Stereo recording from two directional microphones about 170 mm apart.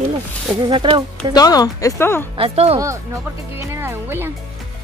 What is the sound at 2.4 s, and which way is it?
Speech, 35° right (ahead or behind).